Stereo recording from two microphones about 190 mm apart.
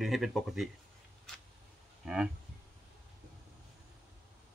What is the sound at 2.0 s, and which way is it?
Speech, 5° right (ahead or behind).